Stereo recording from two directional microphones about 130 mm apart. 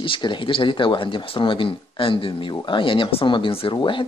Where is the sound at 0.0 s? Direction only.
40° left (ahead or behind).